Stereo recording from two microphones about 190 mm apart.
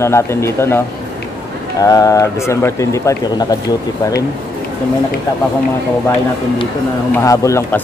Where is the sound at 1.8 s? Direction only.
20° left (ahead or behind).